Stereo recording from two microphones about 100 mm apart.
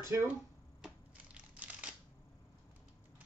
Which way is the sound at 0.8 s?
10° right (ahead or behind).